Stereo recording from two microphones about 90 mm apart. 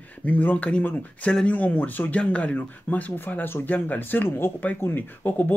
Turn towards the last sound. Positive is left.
turn(degrees=20)  # may be behind; listen again after turning